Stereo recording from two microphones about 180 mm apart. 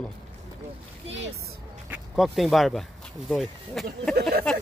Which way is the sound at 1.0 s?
90° right.